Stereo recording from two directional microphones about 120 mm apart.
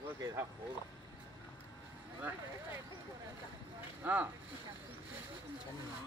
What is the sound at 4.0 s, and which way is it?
Speech, 15° right (ahead or behind).